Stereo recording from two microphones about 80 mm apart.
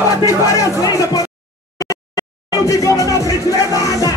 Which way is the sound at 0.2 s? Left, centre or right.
Left.